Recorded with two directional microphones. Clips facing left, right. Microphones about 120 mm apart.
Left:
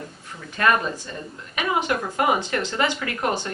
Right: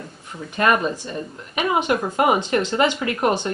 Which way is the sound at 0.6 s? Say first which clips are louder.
Right 2 dB; 20° right (ahead or behind).